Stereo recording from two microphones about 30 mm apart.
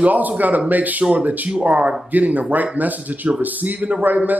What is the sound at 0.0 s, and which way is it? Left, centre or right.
A man's voice, right.